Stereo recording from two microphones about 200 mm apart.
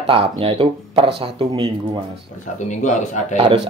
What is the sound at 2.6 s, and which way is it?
Speech, 35° left (ahead or behind).